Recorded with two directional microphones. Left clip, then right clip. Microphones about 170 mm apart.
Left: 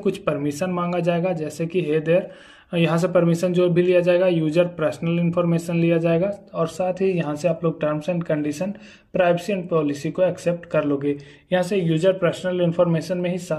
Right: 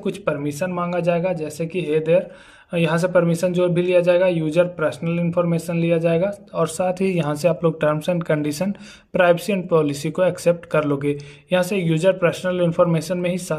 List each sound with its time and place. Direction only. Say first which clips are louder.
0.0 s a man's voice: left 1 dB; centre (ahead or behind)
6.5 s speech: right 2 dB; 25° right (ahead or behind)